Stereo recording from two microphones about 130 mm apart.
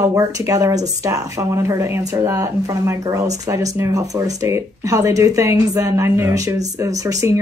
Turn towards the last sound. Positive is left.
turn(degrees=-25)  # may be behind; listen again after turning